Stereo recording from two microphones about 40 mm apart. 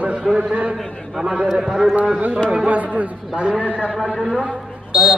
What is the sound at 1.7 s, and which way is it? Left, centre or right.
Speech, centre.